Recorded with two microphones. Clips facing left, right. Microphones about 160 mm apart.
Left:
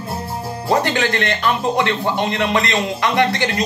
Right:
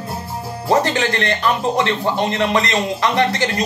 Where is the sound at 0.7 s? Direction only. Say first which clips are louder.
Right 1 dB; 35° right (ahead or behind).